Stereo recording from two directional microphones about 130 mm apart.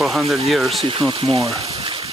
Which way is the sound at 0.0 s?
Centre (ahead or behind).